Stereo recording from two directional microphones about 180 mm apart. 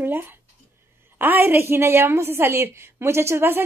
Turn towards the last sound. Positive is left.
turn(degrees=-15)  # may be behind; listen again after turning